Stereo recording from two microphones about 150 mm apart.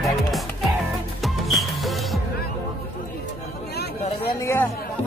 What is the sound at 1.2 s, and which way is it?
Music, centre (ahead or behind).